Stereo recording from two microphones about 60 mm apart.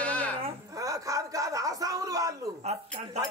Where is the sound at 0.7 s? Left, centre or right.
Right.